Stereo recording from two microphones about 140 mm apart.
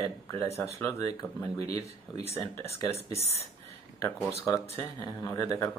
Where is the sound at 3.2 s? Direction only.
50° left (ahead or behind).